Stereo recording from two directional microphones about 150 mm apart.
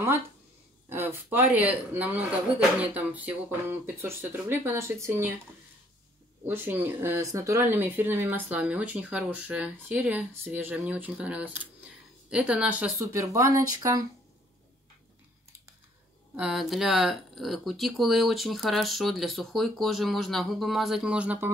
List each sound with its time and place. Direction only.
0.8 s speech: 15° right (ahead or behind)
6.4 s speech: 15° right (ahead or behind)
16.3 s speech: 5° right (ahead or behind)